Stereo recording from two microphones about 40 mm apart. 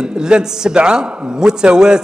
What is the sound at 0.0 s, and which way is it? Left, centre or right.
A man's voice, centre.